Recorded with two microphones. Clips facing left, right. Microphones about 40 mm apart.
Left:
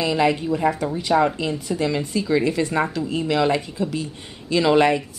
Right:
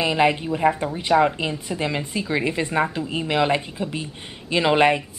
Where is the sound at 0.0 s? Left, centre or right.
Right.